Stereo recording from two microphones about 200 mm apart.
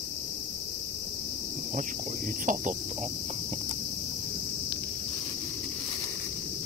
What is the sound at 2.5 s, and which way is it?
Cricket, 40° right (ahead or behind).